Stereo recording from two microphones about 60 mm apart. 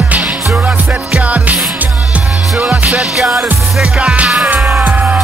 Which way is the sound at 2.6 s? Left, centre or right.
Right.